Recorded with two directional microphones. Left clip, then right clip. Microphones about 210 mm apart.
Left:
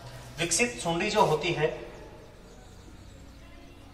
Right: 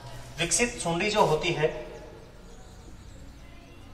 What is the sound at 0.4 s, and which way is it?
A woman's voice, 20° left (ahead or behind).